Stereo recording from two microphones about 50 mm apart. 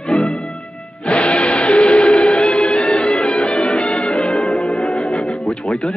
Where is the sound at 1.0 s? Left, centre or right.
Left.